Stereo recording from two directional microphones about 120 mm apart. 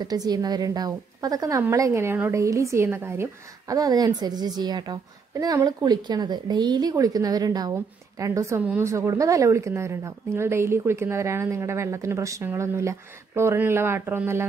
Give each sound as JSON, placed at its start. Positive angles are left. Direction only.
{"t": 0.0, "sound": "a woman's voice", "side_deg": -35}